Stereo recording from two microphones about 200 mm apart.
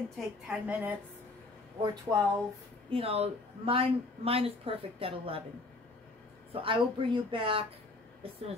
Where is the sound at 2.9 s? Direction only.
30° right (ahead or behind).